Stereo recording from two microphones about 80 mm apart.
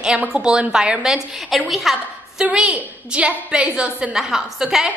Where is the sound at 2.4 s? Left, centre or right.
Centre.